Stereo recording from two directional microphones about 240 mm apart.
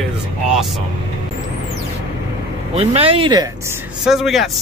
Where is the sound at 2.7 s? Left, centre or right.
Right.